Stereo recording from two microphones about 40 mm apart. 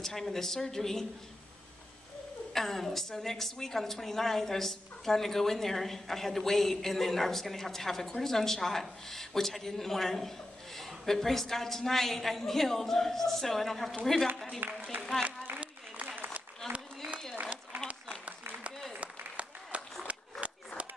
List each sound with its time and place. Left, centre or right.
0.0 s a woman's voice: centre
2.5 s a woman's voice: centre
14.6 s a man's voice: right
15.5 s a sound: right
17.7 s applause: right
18.9 s applause: right
20.1 s a sound: right